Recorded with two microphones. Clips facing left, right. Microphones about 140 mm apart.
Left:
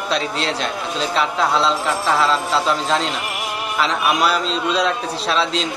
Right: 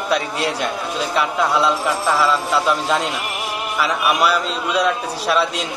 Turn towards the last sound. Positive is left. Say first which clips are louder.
# right 1 dB
turn(degrees=-10)  # may be behind; listen again after turning